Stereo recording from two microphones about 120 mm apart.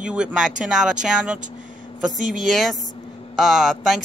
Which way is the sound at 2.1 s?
90° right.